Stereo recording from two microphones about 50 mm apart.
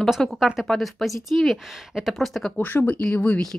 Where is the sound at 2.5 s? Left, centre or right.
Left.